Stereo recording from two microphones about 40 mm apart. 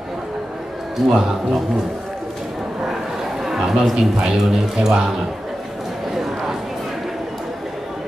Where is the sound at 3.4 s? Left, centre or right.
Centre.